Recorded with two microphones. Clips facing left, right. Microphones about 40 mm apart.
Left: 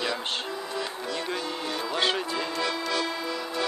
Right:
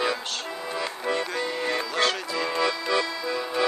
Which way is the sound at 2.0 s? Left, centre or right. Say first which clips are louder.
Even; left.